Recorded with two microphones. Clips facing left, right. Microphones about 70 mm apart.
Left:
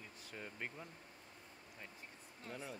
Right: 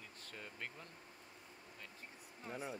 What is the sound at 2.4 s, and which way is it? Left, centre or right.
Speech, right.